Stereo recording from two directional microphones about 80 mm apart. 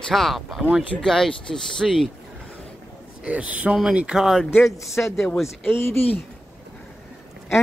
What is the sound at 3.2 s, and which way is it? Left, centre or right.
Speech, centre.